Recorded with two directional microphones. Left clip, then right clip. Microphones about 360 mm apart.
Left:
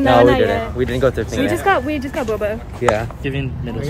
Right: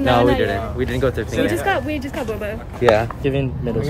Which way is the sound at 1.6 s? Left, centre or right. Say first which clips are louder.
Left 4 dB; centre.